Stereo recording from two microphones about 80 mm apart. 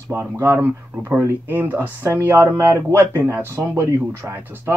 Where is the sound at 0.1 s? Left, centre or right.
Right.